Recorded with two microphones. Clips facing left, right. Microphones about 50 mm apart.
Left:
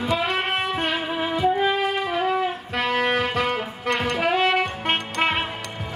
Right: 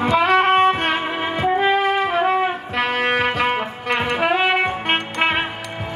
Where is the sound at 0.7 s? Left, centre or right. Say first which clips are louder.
Right 5 dB; right.